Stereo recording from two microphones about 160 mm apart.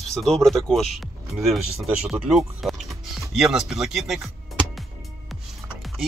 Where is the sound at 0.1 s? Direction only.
Centre (ahead or behind).